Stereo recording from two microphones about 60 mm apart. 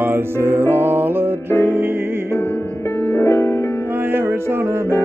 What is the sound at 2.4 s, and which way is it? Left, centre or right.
Music, left.